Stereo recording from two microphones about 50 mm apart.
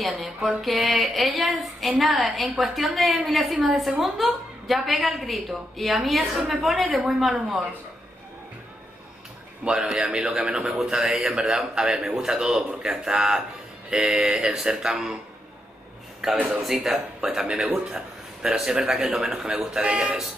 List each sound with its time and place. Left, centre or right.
0.6 s a woman's voice: centre
9.7 s speech: centre
16.4 s speech: centre